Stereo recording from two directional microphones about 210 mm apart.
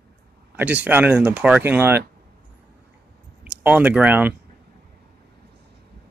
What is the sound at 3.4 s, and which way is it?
Speech, 10° right (ahead or behind).